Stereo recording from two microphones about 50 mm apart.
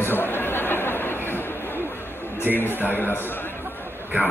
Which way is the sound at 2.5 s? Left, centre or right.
Left.